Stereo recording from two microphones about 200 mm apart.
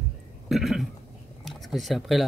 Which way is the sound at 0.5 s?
Centre (ahead or behind).